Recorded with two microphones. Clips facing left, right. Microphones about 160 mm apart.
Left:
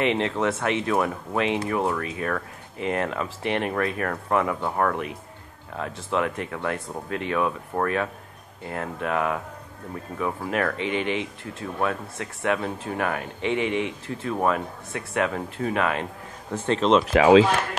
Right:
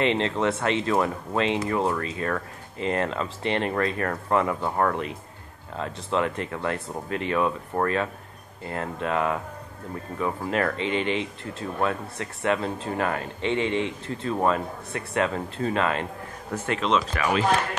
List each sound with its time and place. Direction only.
0.0 s speech: 5° left (ahead or behind)
16.5 s speech: 30° left (ahead or behind)
17.1 s speech: 90° left